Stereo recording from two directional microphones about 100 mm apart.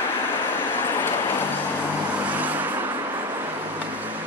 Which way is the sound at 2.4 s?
15° right (ahead or behind).